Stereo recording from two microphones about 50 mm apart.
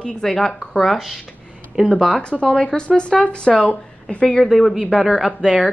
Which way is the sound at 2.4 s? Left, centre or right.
Centre.